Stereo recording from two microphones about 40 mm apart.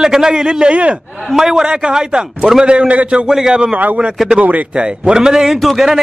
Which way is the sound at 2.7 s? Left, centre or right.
Right.